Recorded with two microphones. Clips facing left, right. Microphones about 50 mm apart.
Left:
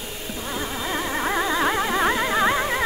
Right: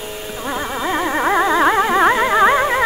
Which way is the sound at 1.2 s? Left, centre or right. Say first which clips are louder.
Right 8 dB; right.